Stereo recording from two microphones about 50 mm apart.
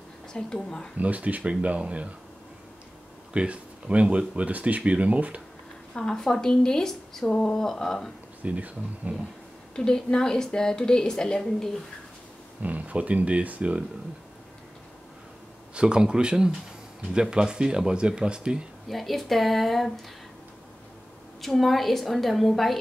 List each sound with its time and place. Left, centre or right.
0.3 s a woman's voice: centre
0.9 s speech: right
3.3 s speech: right
5.9 s a woman's voice: centre
8.4 s speech: right
9.8 s a woman's voice: centre
12.6 s speech: right
15.7 s speech: centre
18.9 s a woman's voice: centre
21.4 s a woman's voice: centre